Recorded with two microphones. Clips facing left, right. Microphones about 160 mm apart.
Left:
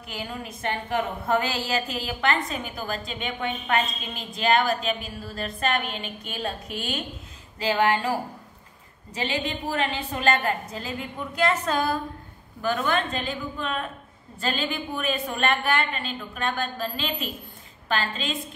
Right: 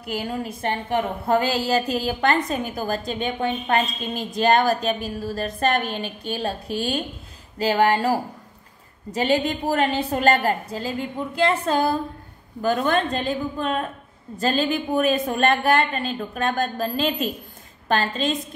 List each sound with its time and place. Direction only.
0.1 s a woman's voice: 40° right (ahead or behind)
12.6 s a woman's voice: 40° right (ahead or behind)